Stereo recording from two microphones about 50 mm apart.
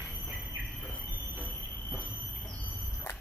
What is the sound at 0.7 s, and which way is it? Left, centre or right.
Squeal, centre.